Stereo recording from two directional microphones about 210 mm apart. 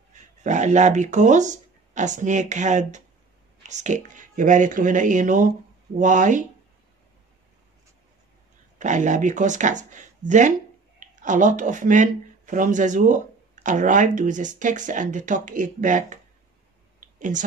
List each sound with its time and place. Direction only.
0.1 s speech: 35° right (ahead or behind)
8.7 s speech: 35° right (ahead or behind)
17.0 s a sound: 35° right (ahead or behind)